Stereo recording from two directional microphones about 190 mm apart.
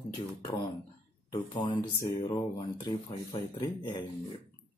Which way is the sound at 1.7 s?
20° left (ahead or behind).